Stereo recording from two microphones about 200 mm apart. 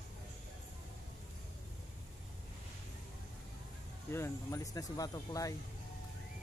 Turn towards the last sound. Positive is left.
turn(degrees=15)  # may be behind; listen again after turning